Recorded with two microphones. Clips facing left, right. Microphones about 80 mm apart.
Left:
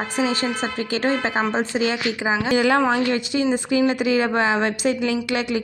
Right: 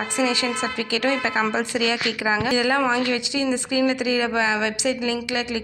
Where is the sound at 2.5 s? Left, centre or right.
Left.